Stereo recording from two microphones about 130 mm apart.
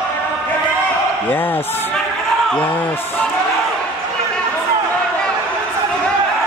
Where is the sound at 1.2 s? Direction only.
15° left (ahead or behind).